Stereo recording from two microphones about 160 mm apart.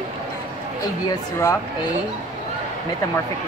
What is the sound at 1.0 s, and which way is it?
Speech, 20° left (ahead or behind).